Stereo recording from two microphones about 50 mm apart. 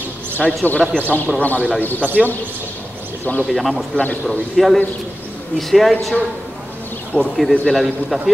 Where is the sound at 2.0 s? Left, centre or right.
Left.